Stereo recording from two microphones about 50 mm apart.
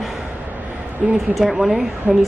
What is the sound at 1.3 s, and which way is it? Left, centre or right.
Speech, centre.